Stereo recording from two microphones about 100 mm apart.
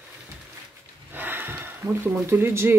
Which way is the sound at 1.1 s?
20° right (ahead or behind).